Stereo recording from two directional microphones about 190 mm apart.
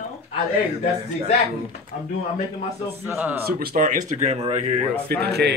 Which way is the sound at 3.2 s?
10° right (ahead or behind).